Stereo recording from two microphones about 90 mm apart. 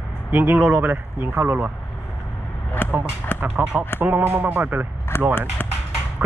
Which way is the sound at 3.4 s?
15° right (ahead or behind).